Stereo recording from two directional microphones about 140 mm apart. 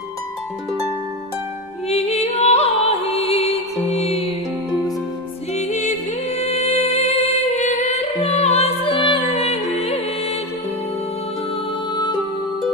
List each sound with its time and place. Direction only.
1.9 s music: 50° left (ahead or behind)
5.5 s music: 55° left (ahead or behind)
11.9 s music: 30° left (ahead or behind)